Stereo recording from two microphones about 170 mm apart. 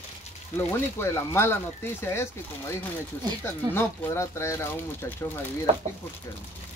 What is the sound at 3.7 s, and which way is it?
Speech, 15° left (ahead or behind).